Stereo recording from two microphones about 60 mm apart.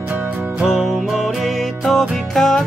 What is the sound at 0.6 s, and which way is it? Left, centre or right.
Music, centre.